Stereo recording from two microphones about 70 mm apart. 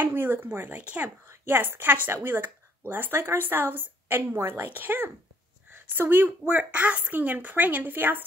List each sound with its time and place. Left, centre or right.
0.0 s speech: right
1.2 s a woman's voice: right